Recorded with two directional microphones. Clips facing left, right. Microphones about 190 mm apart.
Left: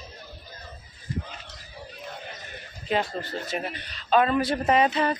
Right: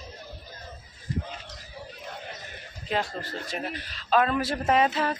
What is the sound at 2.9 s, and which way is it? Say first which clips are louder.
A man's voice: left 3 dB; centre (ahead or behind).